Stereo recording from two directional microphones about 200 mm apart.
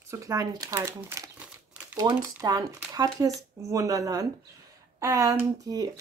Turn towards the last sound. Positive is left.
turn(degrees=-15)  # may be behind; listen again after turning